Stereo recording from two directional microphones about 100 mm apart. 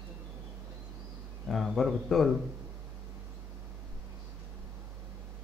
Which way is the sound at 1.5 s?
Centre (ahead or behind).